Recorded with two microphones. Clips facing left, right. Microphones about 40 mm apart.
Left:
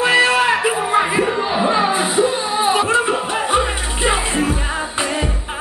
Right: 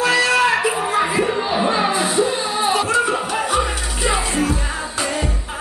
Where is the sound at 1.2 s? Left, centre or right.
Centre.